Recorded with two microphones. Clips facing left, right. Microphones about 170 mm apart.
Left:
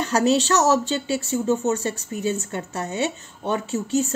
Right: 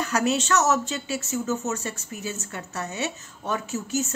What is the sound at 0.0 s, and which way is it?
Speech, 35° left (ahead or behind).